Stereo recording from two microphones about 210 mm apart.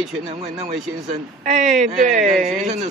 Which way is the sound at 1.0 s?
35° right (ahead or behind).